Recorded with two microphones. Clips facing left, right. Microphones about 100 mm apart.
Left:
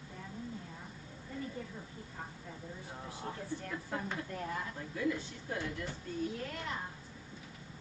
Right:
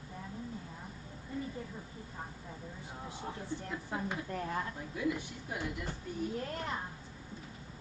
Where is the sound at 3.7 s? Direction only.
15° right (ahead or behind).